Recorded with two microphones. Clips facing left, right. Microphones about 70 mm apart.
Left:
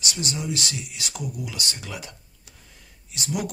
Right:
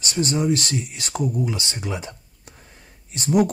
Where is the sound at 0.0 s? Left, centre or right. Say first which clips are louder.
Right 8 dB; right.